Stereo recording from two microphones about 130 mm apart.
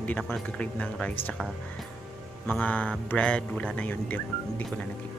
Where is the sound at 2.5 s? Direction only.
10° left (ahead or behind).